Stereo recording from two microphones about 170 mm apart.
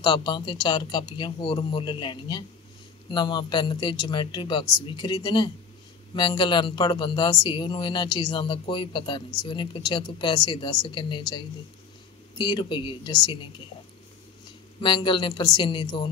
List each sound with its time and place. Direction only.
0.0 s speech: 25° left (ahead or behind)
14.8 s speech: 30° left (ahead or behind)